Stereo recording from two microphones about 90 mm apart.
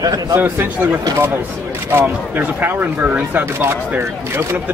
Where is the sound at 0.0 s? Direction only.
45° right (ahead or behind).